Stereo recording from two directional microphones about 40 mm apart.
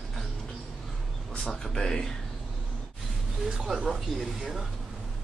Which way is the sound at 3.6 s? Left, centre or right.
Centre.